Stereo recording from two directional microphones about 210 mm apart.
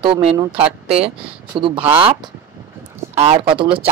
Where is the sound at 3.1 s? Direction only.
25° right (ahead or behind).